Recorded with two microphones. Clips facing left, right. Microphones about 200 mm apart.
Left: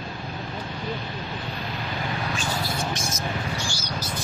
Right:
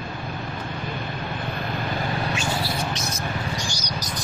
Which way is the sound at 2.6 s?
50° left (ahead or behind).